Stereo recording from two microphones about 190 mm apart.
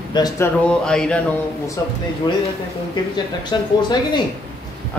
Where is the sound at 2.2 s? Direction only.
25° left (ahead or behind).